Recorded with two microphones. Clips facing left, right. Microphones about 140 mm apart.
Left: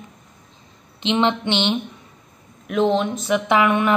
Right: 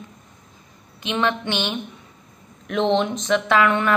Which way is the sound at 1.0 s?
20° left (ahead or behind).